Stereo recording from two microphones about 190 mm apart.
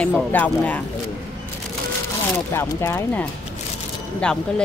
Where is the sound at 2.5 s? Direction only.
10° left (ahead or behind).